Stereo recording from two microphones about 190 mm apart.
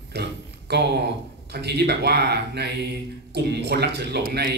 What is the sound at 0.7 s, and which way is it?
Speech, 60° right (ahead or behind).